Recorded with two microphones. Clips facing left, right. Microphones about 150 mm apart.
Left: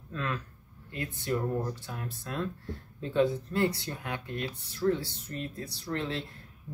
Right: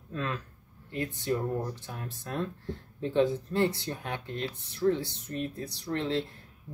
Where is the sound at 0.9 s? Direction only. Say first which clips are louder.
Right 2 dB; 20° right (ahead or behind).